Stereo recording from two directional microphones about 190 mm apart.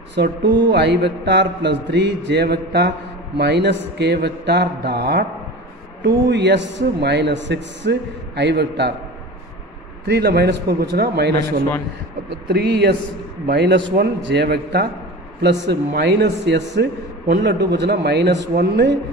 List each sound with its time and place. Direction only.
0.6 s a man's voice: 65° right (ahead or behind)
10.0 s a man's voice: 60° right (ahead or behind)